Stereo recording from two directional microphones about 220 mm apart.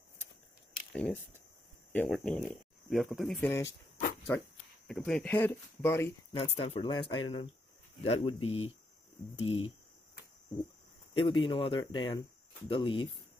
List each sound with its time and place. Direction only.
0.9 s speech: 5° left (ahead or behind)
6.3 s speech: 30° left (ahead or behind)
11.1 s speech: 25° left (ahead or behind)